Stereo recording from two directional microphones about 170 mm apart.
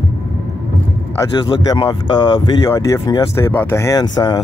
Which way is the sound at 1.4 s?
25° left (ahead or behind).